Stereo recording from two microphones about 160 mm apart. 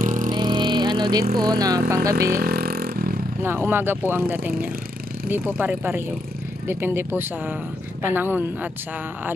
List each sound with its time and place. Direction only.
0.0 s vehicle: 55° right (ahead or behind)
0.3 s vehicle: 30° right (ahead or behind)
1.4 s speech: 25° right (ahead or behind)
2.1 s vehicle: 70° right (ahead or behind)
3.4 s speech: 15° right (ahead or behind)